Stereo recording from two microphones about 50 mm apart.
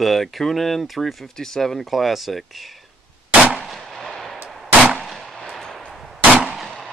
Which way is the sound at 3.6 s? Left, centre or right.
Centre.